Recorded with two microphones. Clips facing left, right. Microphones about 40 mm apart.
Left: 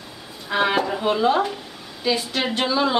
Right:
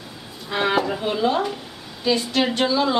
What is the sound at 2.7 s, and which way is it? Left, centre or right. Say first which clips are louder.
Speech: left 3 dB; centre.